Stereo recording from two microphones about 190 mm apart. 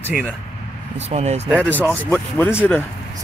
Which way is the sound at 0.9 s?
35° right (ahead or behind).